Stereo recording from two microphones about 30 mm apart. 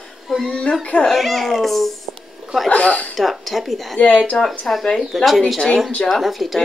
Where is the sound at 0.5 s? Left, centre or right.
Left.